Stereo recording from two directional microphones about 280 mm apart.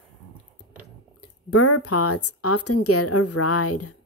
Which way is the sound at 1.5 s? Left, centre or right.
Left.